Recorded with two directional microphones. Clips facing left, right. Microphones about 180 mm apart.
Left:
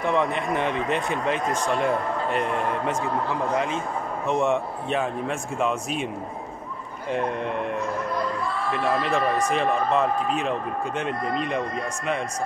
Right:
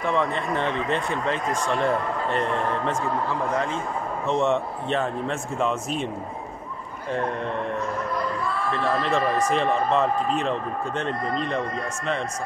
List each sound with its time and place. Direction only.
0.0 s speech: 15° left (ahead or behind)
7.1 s speech: 15° left (ahead or behind)
8.9 s speech: 10° left (ahead or behind)